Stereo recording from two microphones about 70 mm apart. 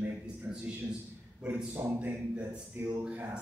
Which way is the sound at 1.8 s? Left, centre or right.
Right.